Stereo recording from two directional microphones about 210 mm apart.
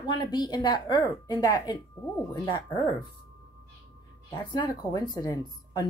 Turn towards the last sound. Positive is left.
turn(degrees=20)  # may be behind; listen again after turning